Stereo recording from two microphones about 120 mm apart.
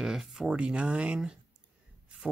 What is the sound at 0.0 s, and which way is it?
Speech, 5° right (ahead or behind).